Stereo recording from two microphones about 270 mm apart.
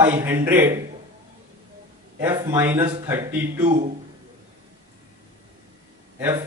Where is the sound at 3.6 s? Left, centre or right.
Right.